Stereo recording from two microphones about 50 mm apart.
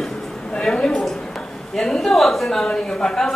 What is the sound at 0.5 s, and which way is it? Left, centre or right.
A woman's voice, centre.